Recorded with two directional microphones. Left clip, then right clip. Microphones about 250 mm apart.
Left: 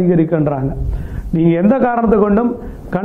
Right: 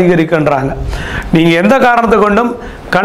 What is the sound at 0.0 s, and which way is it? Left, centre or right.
A man's voice, centre.